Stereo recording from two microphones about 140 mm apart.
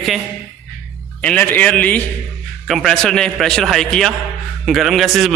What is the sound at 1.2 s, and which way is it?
A man's voice, 10° left (ahead or behind).